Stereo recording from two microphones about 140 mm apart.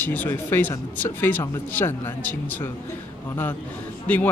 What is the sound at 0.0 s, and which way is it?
Speech, 15° left (ahead or behind).